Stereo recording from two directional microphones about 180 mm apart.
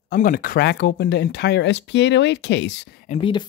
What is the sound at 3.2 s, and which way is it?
Speech, 25° left (ahead or behind).